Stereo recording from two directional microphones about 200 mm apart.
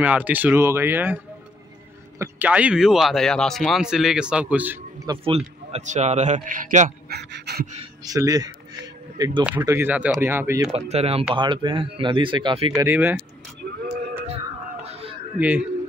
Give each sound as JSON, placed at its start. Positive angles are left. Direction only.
{"t": 0.0, "sound": "a man's voice", "side_deg": -10}
{"t": 5.0, "sound": "a man's voice", "side_deg": -25}
{"t": 7.1, "sound": "speech", "side_deg": -55}
{"t": 8.0, "sound": "speech", "side_deg": -20}
{"t": 9.5, "sound": "speech", "side_deg": -10}
{"t": 10.7, "sound": "a man's voice", "side_deg": -30}
{"t": 12.8, "sound": "speech", "side_deg": -10}
{"t": 14.2, "sound": "wail", "side_deg": -30}
{"t": 15.3, "sound": "speech", "side_deg": -10}